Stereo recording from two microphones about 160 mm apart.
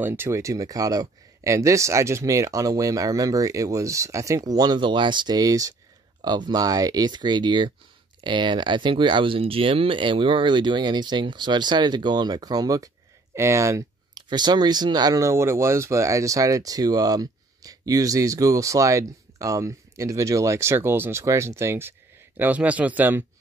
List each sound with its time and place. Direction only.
0.0 s speech: 15° right (ahead or behind)